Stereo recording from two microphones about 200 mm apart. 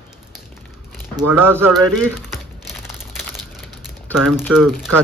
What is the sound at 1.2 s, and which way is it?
Speech, 10° right (ahead or behind).